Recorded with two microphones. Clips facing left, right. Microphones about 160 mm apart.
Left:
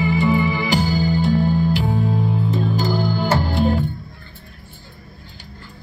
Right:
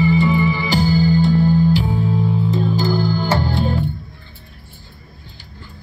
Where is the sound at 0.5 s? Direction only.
15° left (ahead or behind).